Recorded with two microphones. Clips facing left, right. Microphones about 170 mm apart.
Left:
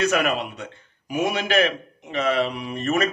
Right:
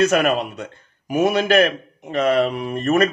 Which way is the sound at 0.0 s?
40° right (ahead or behind).